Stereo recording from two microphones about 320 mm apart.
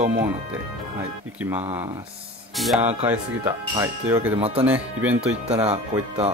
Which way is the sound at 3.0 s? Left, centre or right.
Centre.